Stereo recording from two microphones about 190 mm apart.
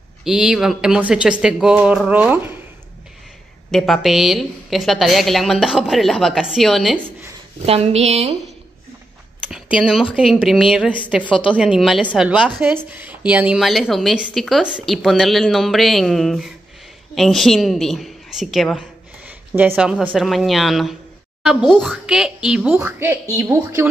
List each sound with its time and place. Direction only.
0.2 s a woman's voice: 5° right (ahead or behind)
3.7 s a woman's voice: centre (ahead or behind)
7.6 s a woman's voice: 30° right (ahead or behind)
9.5 s a woman's voice: 5° right (ahead or behind)